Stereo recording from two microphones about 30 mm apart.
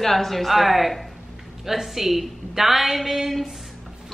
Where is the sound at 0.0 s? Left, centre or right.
Centre.